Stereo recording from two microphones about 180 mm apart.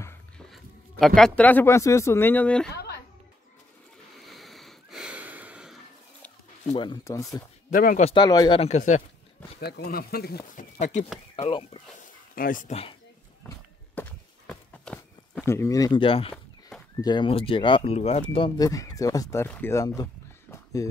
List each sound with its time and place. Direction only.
0.5 s speech: centre (ahead or behind)
2.7 s a sound: 65° left (ahead or behind)
4.3 s a sound: centre (ahead or behind)
6.7 s speech: 25° left (ahead or behind)
7.7 s speech: 50° left (ahead or behind)
8.0 s speech: 25° left (ahead or behind)
8.5 s speech: 40° left (ahead or behind)
9.6 s speech: 65° left (ahead or behind); by 12.1 s 35° left (ahead or behind)
12.4 s speech: 50° left (ahead or behind)
13.9 s walk: 5° left (ahead or behind)
15.5 s speech: 15° left (ahead or behind); by 18.2 s 35° left (ahead or behind)
18.3 s speech: 25° left (ahead or behind)
20.5 s a sound: 20° left (ahead or behind)